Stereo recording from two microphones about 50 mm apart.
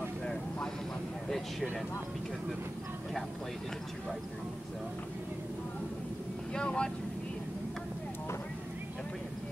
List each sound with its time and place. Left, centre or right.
0.2 s vehicle: centre
6.5 s speech: centre